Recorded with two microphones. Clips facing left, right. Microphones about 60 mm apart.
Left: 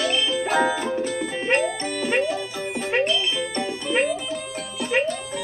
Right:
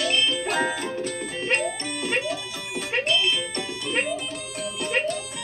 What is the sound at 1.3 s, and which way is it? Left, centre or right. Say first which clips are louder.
Music: left 4 dB; left.